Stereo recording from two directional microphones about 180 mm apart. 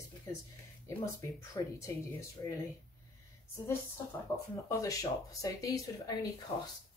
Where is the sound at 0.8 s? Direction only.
15° left (ahead or behind).